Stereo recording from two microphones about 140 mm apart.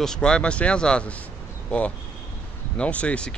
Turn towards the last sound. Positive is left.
turn(degrees=10)  # may be behind; listen again after turning